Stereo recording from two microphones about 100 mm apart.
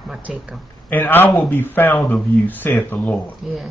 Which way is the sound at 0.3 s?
5° right (ahead or behind).